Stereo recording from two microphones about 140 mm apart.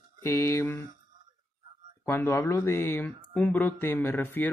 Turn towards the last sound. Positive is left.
turn(degrees=15)  # may be behind; listen again after turning